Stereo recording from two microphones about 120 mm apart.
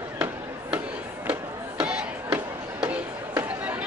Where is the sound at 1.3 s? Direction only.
5° right (ahead or behind).